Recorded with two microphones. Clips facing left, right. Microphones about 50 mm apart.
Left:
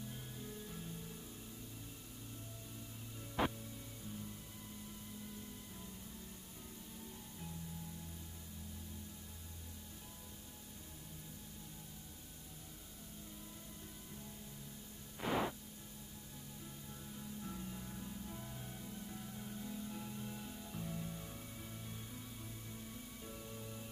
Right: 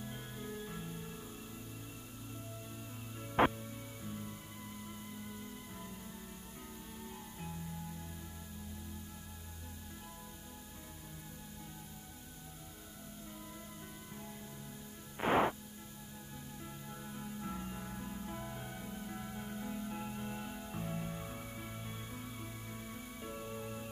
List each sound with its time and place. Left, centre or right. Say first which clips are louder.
0.0 s music: right 4 dB; right
3.3 s music: right 8 dB; right
15.1 s music: right 7 dB; right
17.0 s music: right 4 dB; right